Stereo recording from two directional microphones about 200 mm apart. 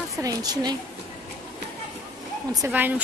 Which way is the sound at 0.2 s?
20° right (ahead or behind).